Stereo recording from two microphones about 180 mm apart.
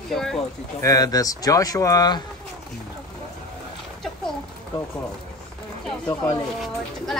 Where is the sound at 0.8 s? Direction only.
20° left (ahead or behind).